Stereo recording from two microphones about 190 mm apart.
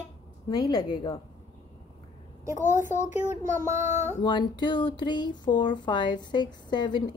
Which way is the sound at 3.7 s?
40° left (ahead or behind).